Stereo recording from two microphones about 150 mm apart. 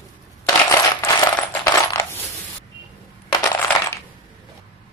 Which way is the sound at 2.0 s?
15° left (ahead or behind).